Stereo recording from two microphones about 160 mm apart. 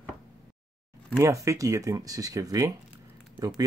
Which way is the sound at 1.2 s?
20° right (ahead or behind).